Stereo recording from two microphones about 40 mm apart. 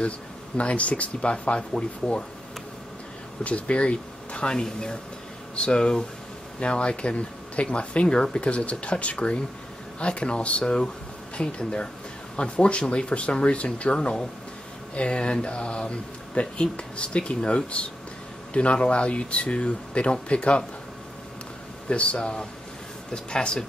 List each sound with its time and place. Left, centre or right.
0.6 s speech: left
3.4 s speech: left
4.6 s speech: centre
8.4 s speech: left
21.8 s speech: left